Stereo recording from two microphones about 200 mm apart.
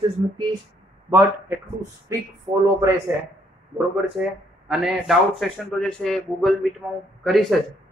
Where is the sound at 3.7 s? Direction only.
5° right (ahead or behind).